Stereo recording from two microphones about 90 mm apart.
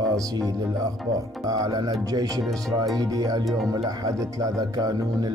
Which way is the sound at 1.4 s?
45° right (ahead or behind).